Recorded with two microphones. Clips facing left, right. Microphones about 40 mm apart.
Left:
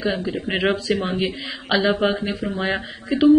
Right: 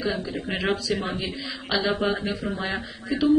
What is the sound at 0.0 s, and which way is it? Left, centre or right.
Speech, left.